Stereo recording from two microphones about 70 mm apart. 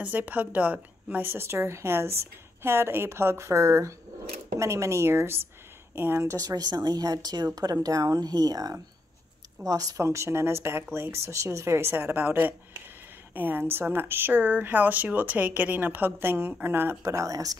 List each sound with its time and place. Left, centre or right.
0.0 s speech: right
1.2 s speech: right
6.2 s speech: right
7.5 s speech: right
17.0 s speech: right